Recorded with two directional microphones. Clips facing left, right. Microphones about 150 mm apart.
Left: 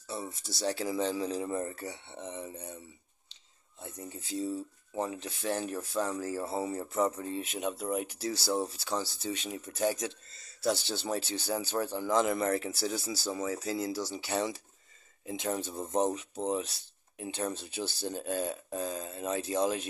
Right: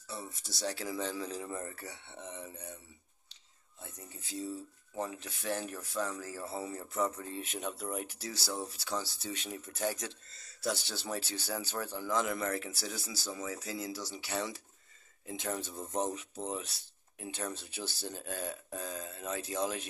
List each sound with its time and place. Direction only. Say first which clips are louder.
0.0 s speech: left 5 dB; 25° left (ahead or behind)
4.9 s speech: left 4 dB; 25° left (ahead or behind)
7.2 s speech: left 5 dB; 15° left (ahead or behind)
10.6 s speech: left 5 dB; 30° left (ahead or behind)